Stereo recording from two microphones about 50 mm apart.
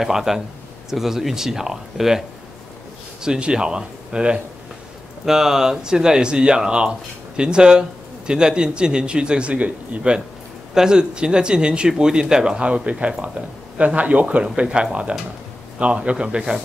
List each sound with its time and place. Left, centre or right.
0.0 s speech: centre; by 10.1 s right
10.7 s speech: centre